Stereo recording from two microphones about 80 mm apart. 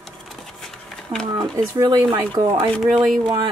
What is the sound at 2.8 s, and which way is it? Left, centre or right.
Speech, centre.